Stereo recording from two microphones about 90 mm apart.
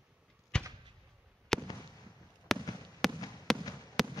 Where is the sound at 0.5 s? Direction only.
10° left (ahead or behind).